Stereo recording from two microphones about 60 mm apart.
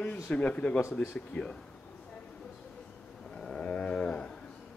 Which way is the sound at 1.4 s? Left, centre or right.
Left.